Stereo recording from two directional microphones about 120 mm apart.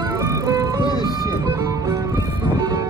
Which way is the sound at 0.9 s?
35° left (ahead or behind).